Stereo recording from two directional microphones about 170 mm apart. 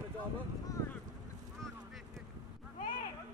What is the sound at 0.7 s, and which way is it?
Boat, 20° left (ahead or behind).